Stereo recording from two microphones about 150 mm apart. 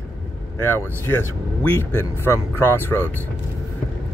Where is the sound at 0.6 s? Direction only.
15° left (ahead or behind).